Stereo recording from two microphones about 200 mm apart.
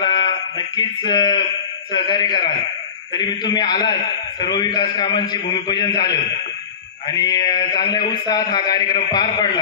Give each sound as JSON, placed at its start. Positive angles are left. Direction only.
{"t": 0.0, "sound": "speech", "side_deg": 25}